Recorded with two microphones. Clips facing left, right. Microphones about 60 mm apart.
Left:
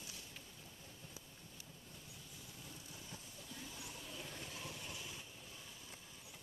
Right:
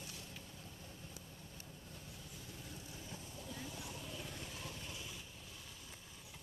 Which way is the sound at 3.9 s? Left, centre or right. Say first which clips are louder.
Right 2 dB; centre.